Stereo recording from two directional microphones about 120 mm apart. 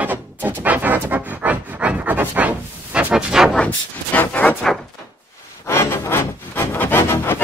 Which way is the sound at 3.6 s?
15° left (ahead or behind).